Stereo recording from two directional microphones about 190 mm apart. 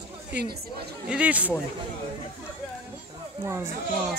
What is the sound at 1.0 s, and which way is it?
Speech, 5° right (ahead or behind).